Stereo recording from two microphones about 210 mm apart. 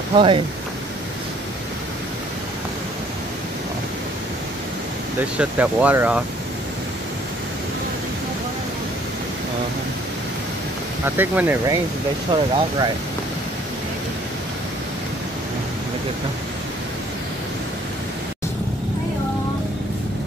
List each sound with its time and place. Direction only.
0.1 s speech: 25° right (ahead or behind)
5.4 s speech: 5° right (ahead or behind)
11.1 s speech: 10° right (ahead or behind)